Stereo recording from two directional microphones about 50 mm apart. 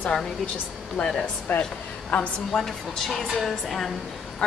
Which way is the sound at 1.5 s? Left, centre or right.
Left.